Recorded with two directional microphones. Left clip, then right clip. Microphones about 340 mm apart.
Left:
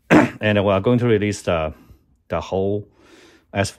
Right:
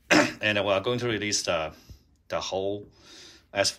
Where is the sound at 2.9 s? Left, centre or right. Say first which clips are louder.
Left 1 dB; left.